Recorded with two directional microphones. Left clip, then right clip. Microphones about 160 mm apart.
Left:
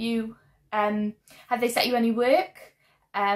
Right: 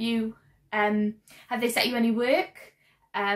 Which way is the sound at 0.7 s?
Centre (ahead or behind).